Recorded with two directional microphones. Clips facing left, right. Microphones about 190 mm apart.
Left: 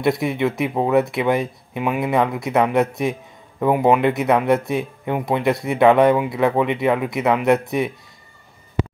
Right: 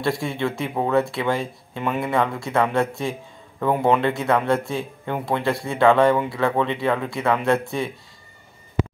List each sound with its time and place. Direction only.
0.0 s speech: 20° left (ahead or behind)